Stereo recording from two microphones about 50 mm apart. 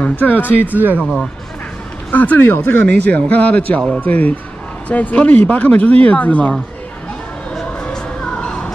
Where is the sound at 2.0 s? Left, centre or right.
Left.